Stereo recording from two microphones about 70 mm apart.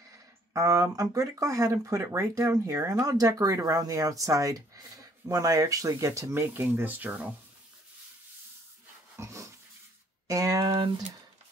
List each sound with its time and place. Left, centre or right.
0.1 s a sound: right
0.9 s speech: right
6.4 s speech: right
9.2 s dog: right
10.2 s speech: right